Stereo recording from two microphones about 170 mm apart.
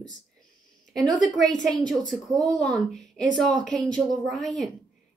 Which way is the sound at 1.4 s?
Centre (ahead or behind).